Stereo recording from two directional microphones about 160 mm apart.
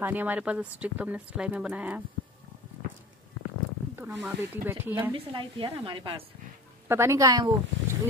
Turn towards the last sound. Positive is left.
turn(degrees=-20)  # may be behind; listen again after turning